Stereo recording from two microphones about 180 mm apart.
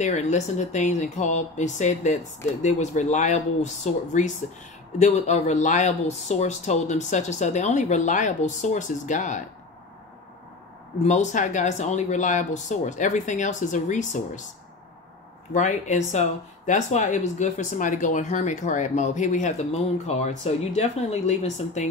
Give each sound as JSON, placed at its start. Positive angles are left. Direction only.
{"t": 0.0, "sound": "speech", "side_deg": 40}
{"t": 11.1, "sound": "speech", "side_deg": 40}
{"t": 15.5, "sound": "speech", "side_deg": 40}